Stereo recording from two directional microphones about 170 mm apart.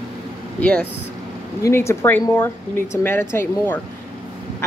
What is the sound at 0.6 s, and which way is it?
A woman's voice, 5° left (ahead or behind).